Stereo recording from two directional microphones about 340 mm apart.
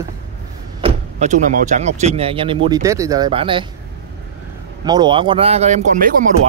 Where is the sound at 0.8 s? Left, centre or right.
Centre.